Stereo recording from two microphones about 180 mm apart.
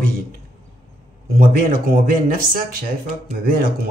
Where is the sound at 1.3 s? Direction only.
50° right (ahead or behind).